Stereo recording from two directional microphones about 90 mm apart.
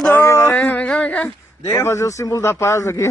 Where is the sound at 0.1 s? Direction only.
30° left (ahead or behind).